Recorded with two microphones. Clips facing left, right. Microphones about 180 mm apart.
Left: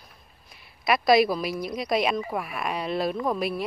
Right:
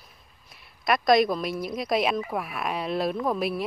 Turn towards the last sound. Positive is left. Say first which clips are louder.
# even
turn(degrees=0)  # may be behind; listen again after turning